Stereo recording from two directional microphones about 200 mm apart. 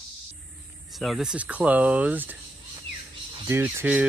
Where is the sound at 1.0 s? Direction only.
Centre (ahead or behind).